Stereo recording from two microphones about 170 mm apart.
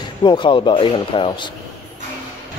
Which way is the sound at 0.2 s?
25° left (ahead or behind).